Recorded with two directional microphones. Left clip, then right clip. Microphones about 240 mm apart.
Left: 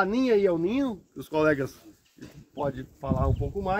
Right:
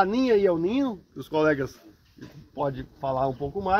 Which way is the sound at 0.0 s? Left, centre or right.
Centre.